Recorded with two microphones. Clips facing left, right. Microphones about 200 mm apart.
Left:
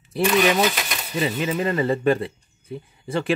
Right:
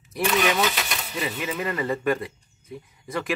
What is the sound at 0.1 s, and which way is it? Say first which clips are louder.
Speech: left 4 dB; 30° left (ahead or behind).